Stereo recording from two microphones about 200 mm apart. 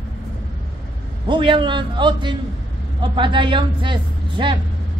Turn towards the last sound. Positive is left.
turn(degrees=-25)  # may be behind; listen again after turning